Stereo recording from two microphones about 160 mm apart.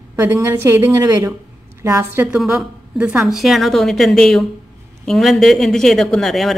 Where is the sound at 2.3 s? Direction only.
5° right (ahead or behind).